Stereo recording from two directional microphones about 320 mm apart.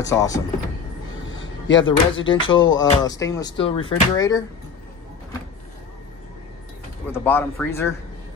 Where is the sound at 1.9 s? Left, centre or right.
Left.